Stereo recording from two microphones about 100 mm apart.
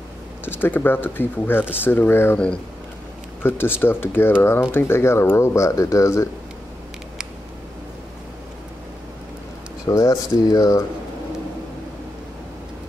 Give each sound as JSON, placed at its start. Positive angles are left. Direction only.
{"t": 0.5, "sound": "speech", "side_deg": 20}
{"t": 2.3, "sound": "speech", "side_deg": 10}
{"t": 3.4, "sound": "speech", "side_deg": 20}
{"t": 9.8, "sound": "speech", "side_deg": 40}